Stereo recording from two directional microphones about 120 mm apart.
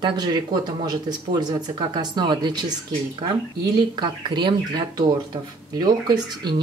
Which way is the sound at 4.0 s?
35° right (ahead or behind).